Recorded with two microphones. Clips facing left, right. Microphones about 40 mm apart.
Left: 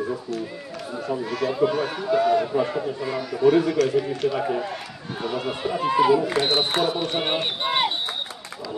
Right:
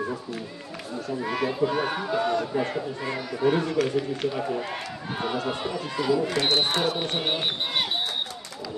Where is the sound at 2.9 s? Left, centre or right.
Centre.